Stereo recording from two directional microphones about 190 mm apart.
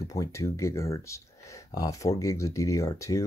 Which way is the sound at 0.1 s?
15° left (ahead or behind).